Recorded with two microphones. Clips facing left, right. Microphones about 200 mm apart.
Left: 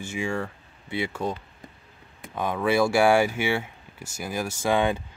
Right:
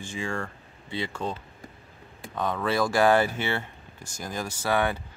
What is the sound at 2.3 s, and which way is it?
Speech, 10° left (ahead or behind).